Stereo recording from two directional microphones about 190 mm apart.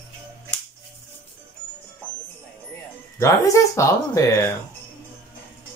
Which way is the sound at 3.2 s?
15° left (ahead or behind).